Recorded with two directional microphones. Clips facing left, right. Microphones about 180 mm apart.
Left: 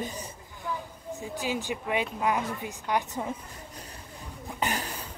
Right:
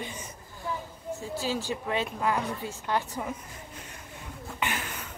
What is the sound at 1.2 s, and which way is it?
Speech, 15° left (ahead or behind).